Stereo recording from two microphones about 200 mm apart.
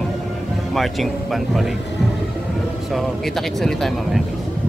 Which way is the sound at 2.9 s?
Centre (ahead or behind).